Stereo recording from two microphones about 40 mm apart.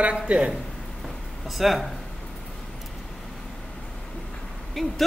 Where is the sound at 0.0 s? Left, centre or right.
Right.